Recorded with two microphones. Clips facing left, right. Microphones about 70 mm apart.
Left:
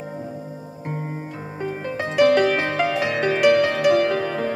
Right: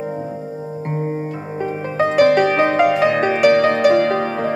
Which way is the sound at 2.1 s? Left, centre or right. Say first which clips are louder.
Right 2 dB; right.